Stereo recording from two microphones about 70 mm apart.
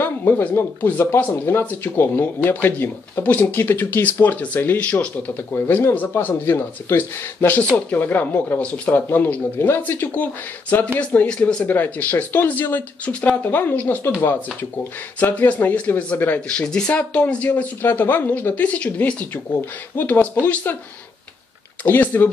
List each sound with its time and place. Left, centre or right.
0.0 s a sound: left
0.6 s speech: left; by 9.0 s centre
9.1 s speech: left
21.8 s speech: left